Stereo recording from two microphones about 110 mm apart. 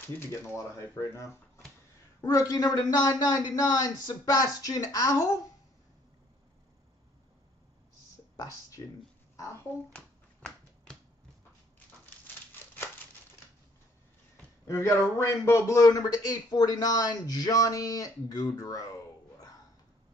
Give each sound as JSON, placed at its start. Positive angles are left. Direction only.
{"t": 0.3, "sound": "a man's voice", "side_deg": 25}
{"t": 8.4, "sound": "a man's voice", "side_deg": 30}
{"t": 9.9, "sound": "finger snapping", "side_deg": 10}
{"t": 14.3, "sound": "a sound", "side_deg": 25}
{"t": 15.1, "sound": "a man's voice", "side_deg": 25}